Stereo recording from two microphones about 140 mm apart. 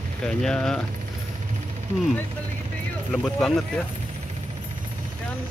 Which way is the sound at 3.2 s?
5° left (ahead or behind).